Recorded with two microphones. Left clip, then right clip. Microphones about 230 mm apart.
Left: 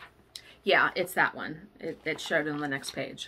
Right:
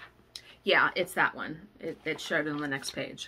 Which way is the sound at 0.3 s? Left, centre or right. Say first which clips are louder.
Left 1 dB; centre.